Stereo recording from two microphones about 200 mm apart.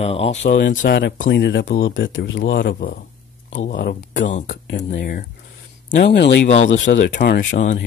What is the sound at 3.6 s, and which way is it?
Speech, 40° left (ahead or behind).